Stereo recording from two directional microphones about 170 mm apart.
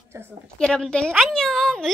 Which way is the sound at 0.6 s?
5° left (ahead or behind).